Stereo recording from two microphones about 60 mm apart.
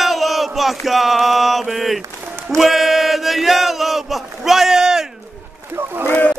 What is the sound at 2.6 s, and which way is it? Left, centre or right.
Chant, centre.